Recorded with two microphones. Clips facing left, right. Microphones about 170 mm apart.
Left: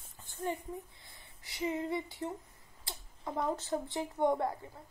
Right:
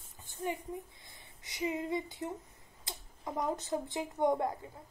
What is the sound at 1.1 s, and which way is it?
Speech, 20° right (ahead or behind).